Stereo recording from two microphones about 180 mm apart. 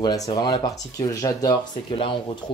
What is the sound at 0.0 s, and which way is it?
Speech, 25° left (ahead or behind).